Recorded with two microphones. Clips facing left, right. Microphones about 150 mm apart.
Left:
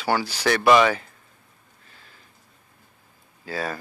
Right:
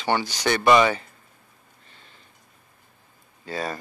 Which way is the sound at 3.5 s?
Centre (ahead or behind).